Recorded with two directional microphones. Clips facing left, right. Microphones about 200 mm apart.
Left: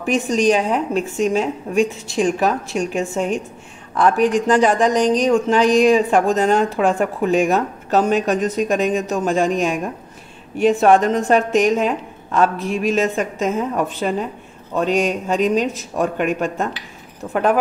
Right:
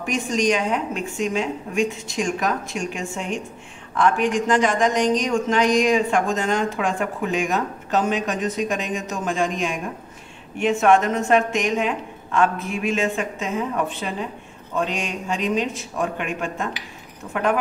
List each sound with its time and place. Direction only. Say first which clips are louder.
0.0 s a woman's voice: left 5 dB; 35° left (ahead or behind)